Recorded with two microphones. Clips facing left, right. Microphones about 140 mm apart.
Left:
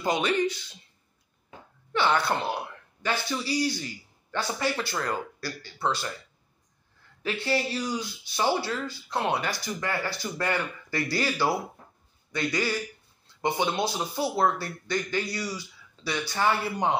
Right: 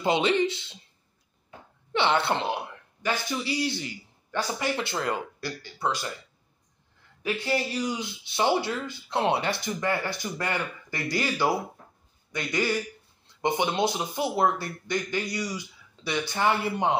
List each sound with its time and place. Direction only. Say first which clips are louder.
0.0 s speech: right 2 dB; 25° right (ahead or behind)
1.9 s speech: right 1 dB; 25° right (ahead or behind)
7.2 s a man's voice: even; 15° right (ahead or behind)